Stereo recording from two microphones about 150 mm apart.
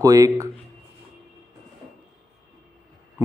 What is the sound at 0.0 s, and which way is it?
Speech, 20° right (ahead or behind).